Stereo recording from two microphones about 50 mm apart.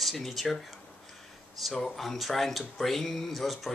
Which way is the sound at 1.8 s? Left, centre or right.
Centre.